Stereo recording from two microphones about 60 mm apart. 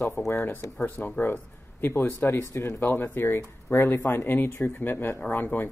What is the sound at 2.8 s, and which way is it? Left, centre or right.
Speech, left.